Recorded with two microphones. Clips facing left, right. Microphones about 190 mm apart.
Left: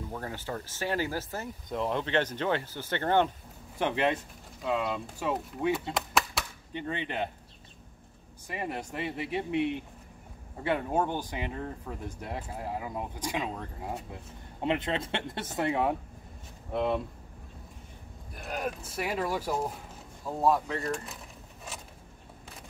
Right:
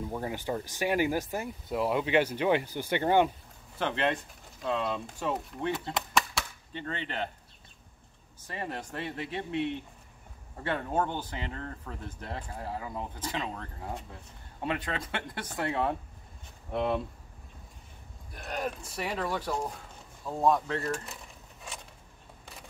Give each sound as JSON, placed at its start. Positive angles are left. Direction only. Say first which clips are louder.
{"t": 0.1, "sound": "speech", "louder": "right 3 dB", "side_deg": -15}
{"t": 3.7, "sound": "speech", "louder": "left 2 dB", "side_deg": 10}
{"t": 6.7, "sound": "speech", "louder": "left 3 dB", "side_deg": 15}
{"t": 8.5, "sound": "speech", "louder": "left 2 dB", "side_deg": 10}
{"t": 14.6, "sound": "speech", "louder": "left 4 dB", "side_deg": 20}
{"t": 16.7, "sound": "speech", "louder": "left 1 dB", "side_deg": 0}
{"t": 18.3, "sound": "speech", "louder": "even", "side_deg": 5}
{"t": 20.2, "sound": "a sound", "louder": "even", "side_deg": 5}